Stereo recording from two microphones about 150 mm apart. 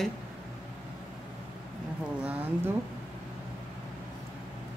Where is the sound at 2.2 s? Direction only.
10° right (ahead or behind).